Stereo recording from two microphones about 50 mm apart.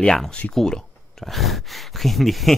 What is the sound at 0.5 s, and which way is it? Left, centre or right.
Speech, centre.